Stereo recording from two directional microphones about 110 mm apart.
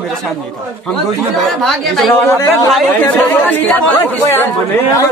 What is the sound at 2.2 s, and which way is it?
Speech, 25° left (ahead or behind).